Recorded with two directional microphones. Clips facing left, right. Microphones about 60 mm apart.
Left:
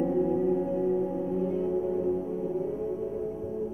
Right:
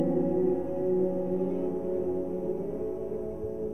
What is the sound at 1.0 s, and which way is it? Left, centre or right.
Music, left.